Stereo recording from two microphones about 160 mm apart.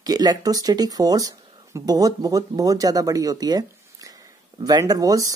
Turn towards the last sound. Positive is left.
turn(degrees=-25)  # may be behind; listen again after turning